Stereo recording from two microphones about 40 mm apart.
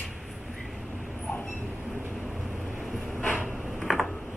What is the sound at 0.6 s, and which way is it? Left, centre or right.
Vehicle, centre.